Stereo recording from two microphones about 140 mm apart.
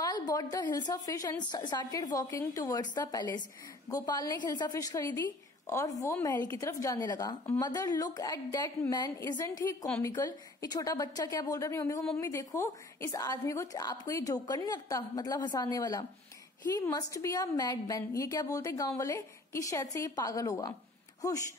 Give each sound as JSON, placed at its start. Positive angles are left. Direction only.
{"t": 0.0, "sound": "a woman's voice", "side_deg": 30}